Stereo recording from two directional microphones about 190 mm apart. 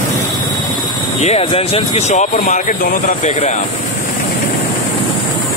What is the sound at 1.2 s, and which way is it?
Speech, 30° left (ahead or behind).